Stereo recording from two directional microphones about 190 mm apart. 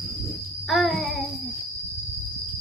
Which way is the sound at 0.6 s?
Centre (ahead or behind).